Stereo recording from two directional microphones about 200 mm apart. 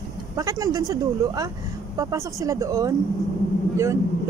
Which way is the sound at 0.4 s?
15° right (ahead or behind).